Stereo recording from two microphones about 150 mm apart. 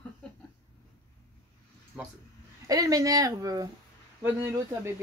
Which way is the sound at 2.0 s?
5° right (ahead or behind).